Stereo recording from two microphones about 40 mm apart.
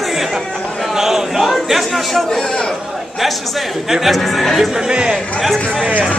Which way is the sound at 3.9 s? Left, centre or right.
Centre.